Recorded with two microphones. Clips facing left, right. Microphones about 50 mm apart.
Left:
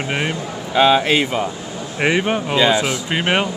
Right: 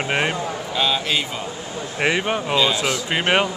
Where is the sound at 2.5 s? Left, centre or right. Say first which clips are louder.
Left 5 dB; centre.